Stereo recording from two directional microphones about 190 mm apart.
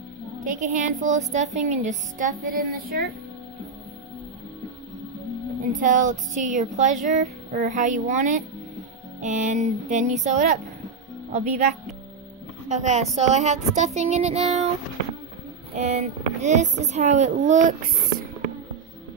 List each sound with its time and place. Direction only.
0.4 s speech: 45° right (ahead or behind)
5.6 s a woman's voice: 45° right (ahead or behind)
15.7 s speech: 35° right (ahead or behind)